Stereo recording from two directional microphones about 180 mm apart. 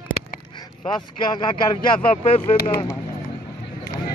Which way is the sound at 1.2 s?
25° left (ahead or behind).